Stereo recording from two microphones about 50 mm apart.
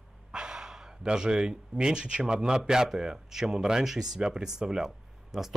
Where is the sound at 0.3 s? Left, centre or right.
Centre.